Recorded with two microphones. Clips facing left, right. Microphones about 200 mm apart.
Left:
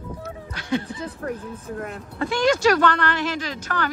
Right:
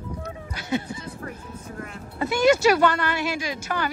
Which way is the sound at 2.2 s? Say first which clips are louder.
Right 2 dB; 10° right (ahead or behind).